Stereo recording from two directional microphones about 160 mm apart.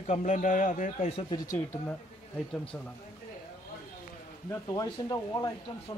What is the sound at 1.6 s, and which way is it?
Speech, 10° left (ahead or behind).